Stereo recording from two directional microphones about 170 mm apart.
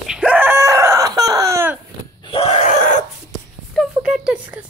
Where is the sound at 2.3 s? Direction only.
40° left (ahead or behind).